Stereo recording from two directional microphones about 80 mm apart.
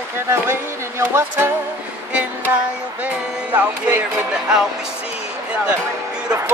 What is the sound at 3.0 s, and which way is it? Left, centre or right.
Speech, right.